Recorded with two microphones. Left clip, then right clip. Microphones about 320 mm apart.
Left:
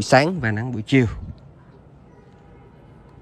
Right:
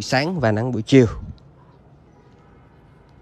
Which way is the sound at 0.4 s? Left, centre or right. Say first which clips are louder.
Right 6 dB; centre.